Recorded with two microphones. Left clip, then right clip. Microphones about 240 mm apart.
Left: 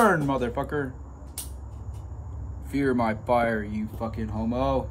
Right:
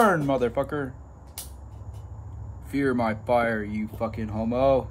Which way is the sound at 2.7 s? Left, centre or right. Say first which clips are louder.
Even; centre.